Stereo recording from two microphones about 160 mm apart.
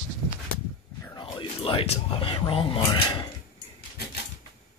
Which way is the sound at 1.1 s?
30° left (ahead or behind).